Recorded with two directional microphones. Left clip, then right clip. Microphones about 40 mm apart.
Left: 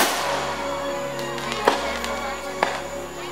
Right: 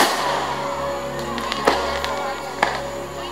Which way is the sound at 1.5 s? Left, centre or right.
Left.